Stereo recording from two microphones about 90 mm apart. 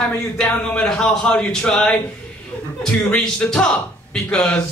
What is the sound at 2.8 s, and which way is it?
A man's voice, 10° left (ahead or behind).